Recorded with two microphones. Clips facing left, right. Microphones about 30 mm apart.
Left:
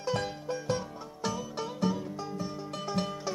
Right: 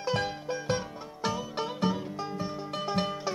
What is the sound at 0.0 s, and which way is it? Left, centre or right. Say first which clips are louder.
Music: right 2 dB; right.